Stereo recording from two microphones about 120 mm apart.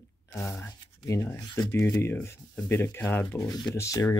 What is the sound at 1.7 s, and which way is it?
Speech, 20° left (ahead or behind).